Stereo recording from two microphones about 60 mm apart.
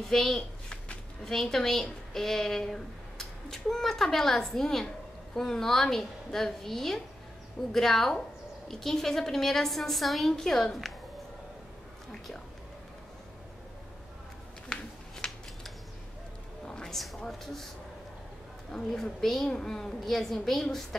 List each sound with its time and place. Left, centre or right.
0.1 s a woman's voice: centre
15.2 s scissors: centre
16.6 s a sound: centre
16.9 s a woman's voice: centre
18.7 s a woman's voice: centre